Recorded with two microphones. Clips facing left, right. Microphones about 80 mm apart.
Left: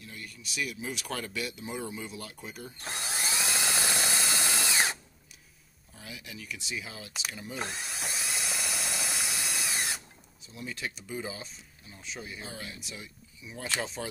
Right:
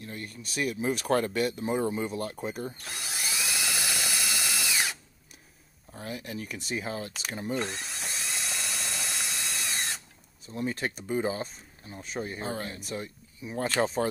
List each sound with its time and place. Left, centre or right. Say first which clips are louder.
0.0 s speech: right 5 dB; right
2.8 s drill: left 2 dB; left
5.9 s speech: right 8 dB; right
7.5 s drill: right 3 dB; centre
10.4 s speech: right 7 dB; right